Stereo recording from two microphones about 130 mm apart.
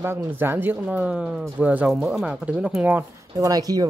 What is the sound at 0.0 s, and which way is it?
Speech, 15° right (ahead or behind).